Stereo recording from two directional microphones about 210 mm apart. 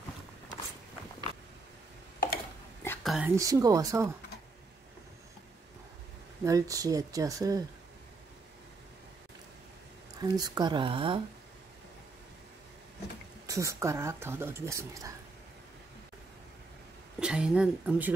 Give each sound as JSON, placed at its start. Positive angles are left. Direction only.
{"t": 2.8, "sound": "whispering", "side_deg": 10}
{"t": 3.1, "sound": "speech", "side_deg": -10}
{"t": 6.4, "sound": "speech", "side_deg": -15}
{"t": 10.2, "sound": "speech", "side_deg": -20}
{"t": 13.5, "sound": "speech", "side_deg": -15}
{"t": 17.2, "sound": "speech", "side_deg": -5}